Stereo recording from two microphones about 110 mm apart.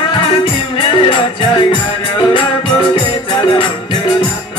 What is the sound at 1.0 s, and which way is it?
Music, 45° left (ahead or behind).